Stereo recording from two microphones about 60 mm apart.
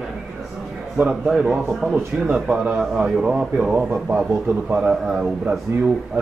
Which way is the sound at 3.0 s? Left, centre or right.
Centre.